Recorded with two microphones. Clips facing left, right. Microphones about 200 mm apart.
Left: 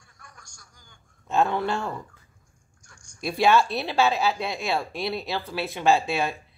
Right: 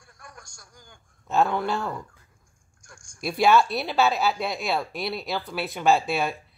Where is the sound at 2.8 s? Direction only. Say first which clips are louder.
Right 5 dB; 50° right (ahead or behind).